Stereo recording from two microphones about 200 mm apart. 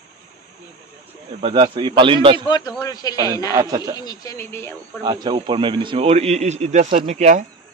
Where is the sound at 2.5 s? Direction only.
20° left (ahead or behind).